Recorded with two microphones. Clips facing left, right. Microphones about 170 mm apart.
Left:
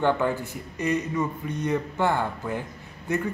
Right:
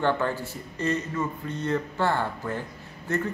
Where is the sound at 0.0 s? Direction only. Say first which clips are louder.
Left 2 dB; 15° left (ahead or behind).